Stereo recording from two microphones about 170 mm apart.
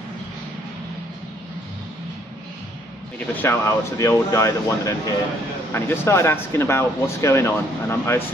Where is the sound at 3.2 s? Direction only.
15° left (ahead or behind).